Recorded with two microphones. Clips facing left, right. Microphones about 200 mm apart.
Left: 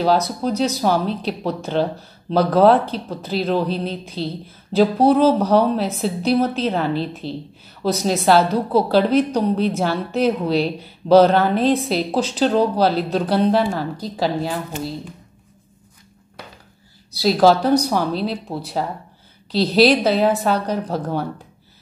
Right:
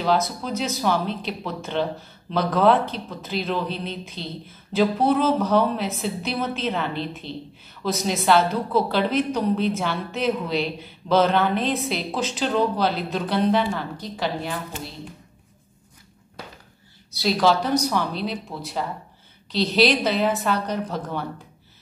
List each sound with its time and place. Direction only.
0.0 s a woman's voice: 35° left (ahead or behind)
17.1 s a woman's voice: 40° left (ahead or behind)